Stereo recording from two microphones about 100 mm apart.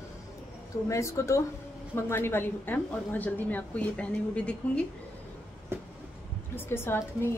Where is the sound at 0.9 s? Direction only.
30° left (ahead or behind); by 4.8 s 10° left (ahead or behind).